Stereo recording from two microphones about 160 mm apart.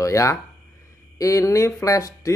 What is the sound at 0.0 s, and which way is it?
Speech, 20° left (ahead or behind).